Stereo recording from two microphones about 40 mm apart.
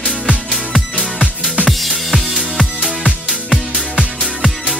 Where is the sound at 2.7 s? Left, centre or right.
Right.